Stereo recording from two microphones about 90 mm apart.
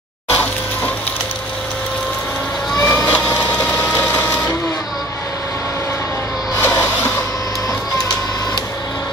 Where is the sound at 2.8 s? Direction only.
35° left (ahead or behind).